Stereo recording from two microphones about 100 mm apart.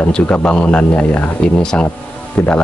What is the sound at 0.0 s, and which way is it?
Speech, 15° left (ahead or behind).